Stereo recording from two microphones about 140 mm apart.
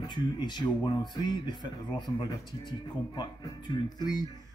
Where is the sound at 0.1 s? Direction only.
30° left (ahead or behind).